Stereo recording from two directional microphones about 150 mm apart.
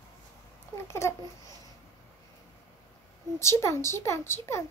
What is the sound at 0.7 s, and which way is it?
Babbling, 15° left (ahead or behind).